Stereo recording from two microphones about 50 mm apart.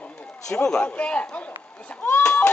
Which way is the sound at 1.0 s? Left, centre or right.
Left.